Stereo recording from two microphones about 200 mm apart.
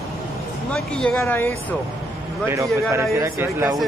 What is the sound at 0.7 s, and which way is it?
Speech, 5° left (ahead or behind).